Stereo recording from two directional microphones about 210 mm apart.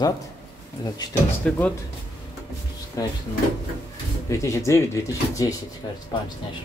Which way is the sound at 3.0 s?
15° left (ahead or behind).